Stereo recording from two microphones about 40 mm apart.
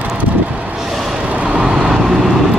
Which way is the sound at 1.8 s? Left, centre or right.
Centre.